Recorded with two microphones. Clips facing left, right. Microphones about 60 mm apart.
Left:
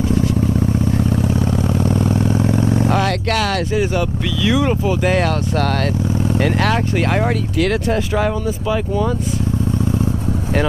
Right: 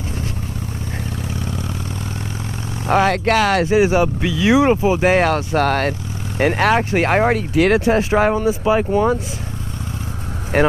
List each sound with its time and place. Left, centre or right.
3.0 s speech: centre; by 9.1 s right